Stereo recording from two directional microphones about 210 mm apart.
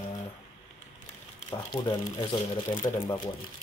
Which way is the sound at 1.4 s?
20° left (ahead or behind).